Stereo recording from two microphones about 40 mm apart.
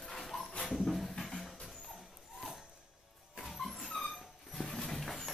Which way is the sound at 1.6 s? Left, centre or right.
Centre.